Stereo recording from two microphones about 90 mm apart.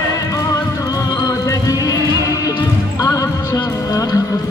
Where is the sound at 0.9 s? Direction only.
45° left (ahead or behind).